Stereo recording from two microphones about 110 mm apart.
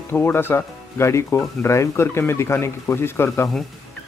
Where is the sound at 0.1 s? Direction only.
20° left (ahead or behind).